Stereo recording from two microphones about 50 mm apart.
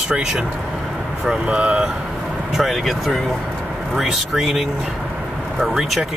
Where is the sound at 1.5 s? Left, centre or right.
Right.